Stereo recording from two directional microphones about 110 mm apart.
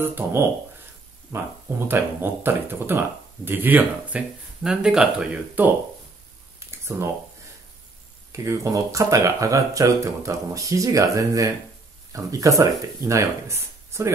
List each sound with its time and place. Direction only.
0.0 s speech: 20° right (ahead or behind)
6.6 s a sound: 25° right (ahead or behind)
8.3 s speech: 30° right (ahead or behind)